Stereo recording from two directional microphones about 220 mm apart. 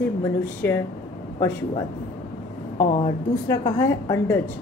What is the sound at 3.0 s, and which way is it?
A woman's voice, 15° left (ahead or behind).